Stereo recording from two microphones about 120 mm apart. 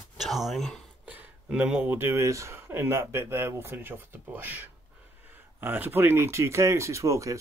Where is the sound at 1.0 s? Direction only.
10° right (ahead or behind).